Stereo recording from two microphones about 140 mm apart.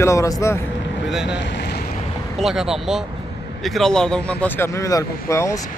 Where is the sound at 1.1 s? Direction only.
5° right (ahead or behind).